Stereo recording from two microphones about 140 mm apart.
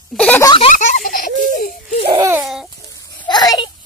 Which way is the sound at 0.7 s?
70° left (ahead or behind).